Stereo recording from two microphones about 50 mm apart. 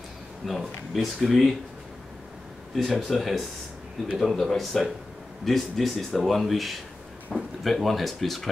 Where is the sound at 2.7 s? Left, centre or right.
Centre.